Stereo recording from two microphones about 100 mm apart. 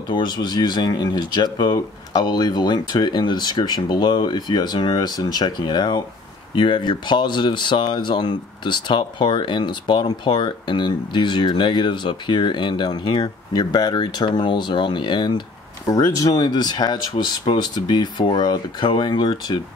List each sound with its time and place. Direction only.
0.1 s speech: 50° left (ahead or behind)
15.9 s speech: 40° left (ahead or behind)